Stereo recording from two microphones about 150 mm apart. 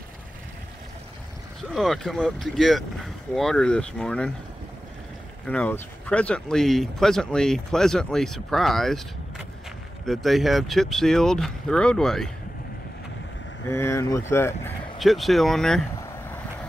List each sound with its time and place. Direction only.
1.6 s speech: centre (ahead or behind)
5.5 s speech: 10° left (ahead or behind)
10.0 s speech: centre (ahead or behind)
13.7 s speech: 15° left (ahead or behind)
15.0 s speech: centre (ahead or behind)